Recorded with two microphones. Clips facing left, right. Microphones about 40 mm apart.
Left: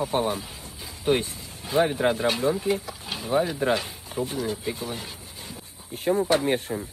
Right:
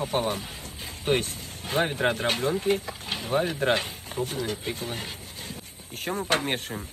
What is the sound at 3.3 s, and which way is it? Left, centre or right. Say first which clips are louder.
Speech: left 2 dB; centre.